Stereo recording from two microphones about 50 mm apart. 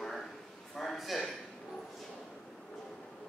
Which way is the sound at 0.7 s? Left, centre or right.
Centre.